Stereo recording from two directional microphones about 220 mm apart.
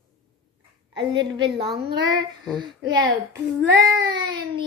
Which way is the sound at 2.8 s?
20° right (ahead or behind).